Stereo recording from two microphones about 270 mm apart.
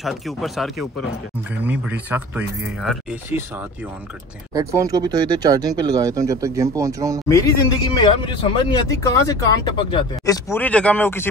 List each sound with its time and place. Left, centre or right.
0.0 s speech: centre
4.6 s speech: centre
7.2 s speech: centre